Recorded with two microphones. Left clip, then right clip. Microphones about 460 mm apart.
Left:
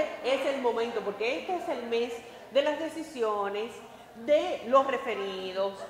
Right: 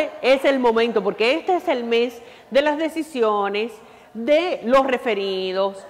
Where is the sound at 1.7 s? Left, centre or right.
Right.